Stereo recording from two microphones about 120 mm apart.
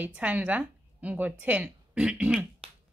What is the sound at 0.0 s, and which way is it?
A woman's voice, 10° right (ahead or behind).